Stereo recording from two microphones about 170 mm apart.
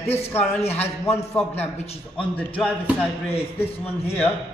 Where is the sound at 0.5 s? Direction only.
35° left (ahead or behind).